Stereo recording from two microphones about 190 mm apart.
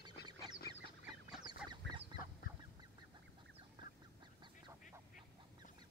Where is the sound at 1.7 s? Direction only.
25° right (ahead or behind).